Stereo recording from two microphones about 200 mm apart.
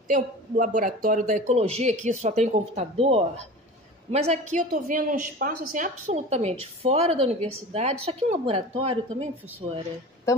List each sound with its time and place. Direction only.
0.1 s a woman's voice: 40° right (ahead or behind)